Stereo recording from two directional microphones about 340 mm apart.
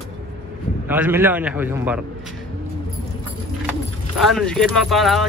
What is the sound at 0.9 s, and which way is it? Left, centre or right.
Speech, centre.